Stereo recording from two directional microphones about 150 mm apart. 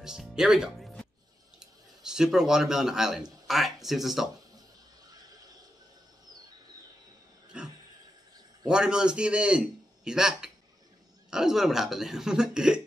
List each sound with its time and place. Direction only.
0.0 s speech: 5° right (ahead or behind)
5.1 s neigh: 25° right (ahead or behind)
7.5 s a sound: 5° right (ahead or behind)
8.6 s a man's voice: 5° right (ahead or behind)